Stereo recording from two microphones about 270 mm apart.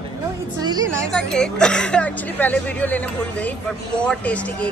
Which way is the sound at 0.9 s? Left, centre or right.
Centre.